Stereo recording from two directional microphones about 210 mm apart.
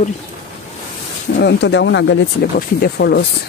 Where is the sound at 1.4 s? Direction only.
55° left (ahead or behind).